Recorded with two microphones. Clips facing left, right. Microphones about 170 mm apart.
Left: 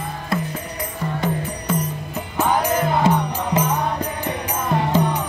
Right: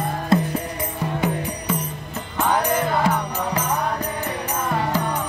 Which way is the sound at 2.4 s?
10° left (ahead or behind).